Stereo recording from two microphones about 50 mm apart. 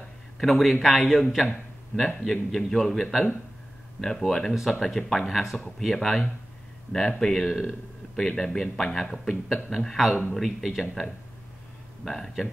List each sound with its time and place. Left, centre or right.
0.4 s a man's voice: centre
1.9 s a man's voice: left
2.2 s a man's voice: centre